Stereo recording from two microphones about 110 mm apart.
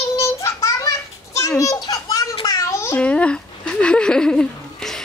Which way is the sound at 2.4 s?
30° left (ahead or behind).